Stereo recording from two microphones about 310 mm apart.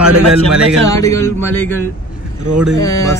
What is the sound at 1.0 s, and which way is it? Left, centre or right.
Speech, centre.